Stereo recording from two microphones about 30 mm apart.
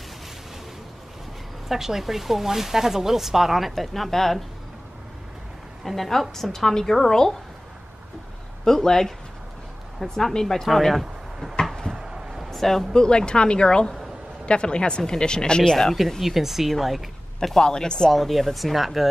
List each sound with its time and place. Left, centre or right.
1.7 s speech: centre
3.7 s speech: centre
5.9 s speech: centre
8.6 s speech: centre
11.4 s a sound: left
11.9 s a sound: right
12.4 s a sound: centre
12.9 s speech: left
16.2 s speech: centre
17.6 s speech: left
18.1 s speech: centre